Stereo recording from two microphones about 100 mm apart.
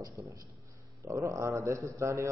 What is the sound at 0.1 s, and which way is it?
Speech, 30° right (ahead or behind).